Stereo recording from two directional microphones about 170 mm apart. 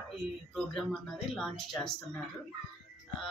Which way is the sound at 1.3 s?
Centre (ahead or behind).